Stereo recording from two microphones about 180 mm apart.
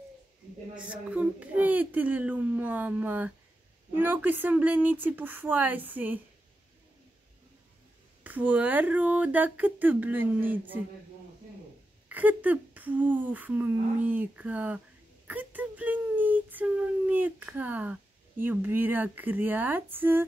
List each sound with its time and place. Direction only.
0.7 s speech: 5° right (ahead or behind)
8.2 s speech: 10° right (ahead or behind)
12.1 s speech: 10° right (ahead or behind)
15.2 s a sound: 10° right (ahead or behind)
18.4 s speech: 10° right (ahead or behind)